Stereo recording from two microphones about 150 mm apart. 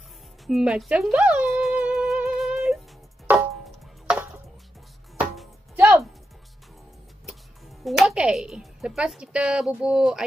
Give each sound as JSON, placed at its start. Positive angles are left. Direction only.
{"t": 0.5, "sound": "music", "side_deg": -5}
{"t": 5.2, "sound": "music", "side_deg": 0}
{"t": 5.8, "sound": "music", "side_deg": -20}
{"t": 7.8, "sound": "speech", "side_deg": 0}